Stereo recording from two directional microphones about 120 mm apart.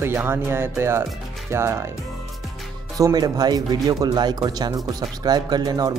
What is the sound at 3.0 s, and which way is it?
Speech, 30° right (ahead or behind).